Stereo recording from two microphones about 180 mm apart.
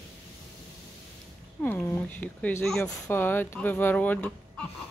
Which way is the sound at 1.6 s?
10° left (ahead or behind).